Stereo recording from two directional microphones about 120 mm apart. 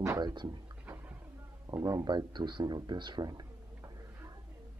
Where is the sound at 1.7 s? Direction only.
30° right (ahead or behind).